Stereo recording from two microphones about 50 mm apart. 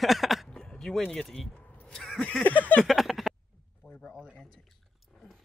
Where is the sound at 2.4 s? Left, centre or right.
Left.